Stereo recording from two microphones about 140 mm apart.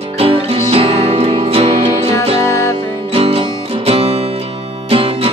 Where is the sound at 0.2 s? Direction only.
45° right (ahead or behind).